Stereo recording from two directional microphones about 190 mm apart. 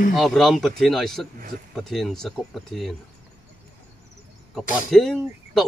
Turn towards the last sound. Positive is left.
turn(degrees=0)  # may be behind; listen again after turning